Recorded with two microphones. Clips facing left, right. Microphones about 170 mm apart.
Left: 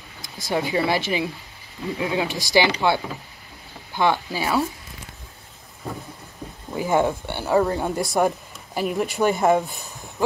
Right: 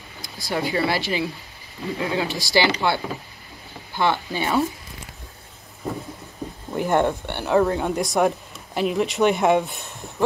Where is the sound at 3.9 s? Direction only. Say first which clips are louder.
Left 1 dB; 15° left (ahead or behind).